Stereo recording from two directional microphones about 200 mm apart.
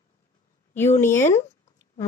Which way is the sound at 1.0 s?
10° left (ahead or behind).